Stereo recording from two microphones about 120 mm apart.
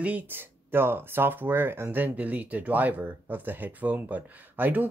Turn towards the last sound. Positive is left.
turn(degrees=-15)  # may be behind; listen again after turning